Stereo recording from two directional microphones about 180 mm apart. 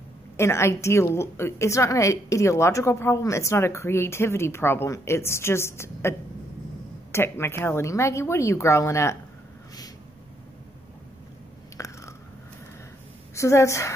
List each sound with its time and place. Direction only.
0.4 s a woman's voice: 15° left (ahead or behind)
11.8 s chewing: 15° left (ahead or behind)
13.3 s a woman's voice: 15° left (ahead or behind)